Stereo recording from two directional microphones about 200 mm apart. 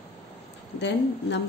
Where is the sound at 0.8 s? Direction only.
60° left (ahead or behind).